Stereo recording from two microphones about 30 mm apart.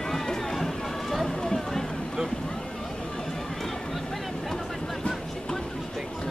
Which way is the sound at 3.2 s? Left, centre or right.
Centre.